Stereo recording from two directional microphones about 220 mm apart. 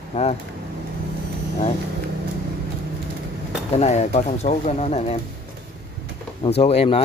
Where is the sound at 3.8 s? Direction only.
30° left (ahead or behind).